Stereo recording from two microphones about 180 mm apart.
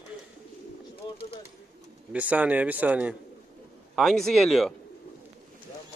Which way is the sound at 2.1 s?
10° right (ahead or behind).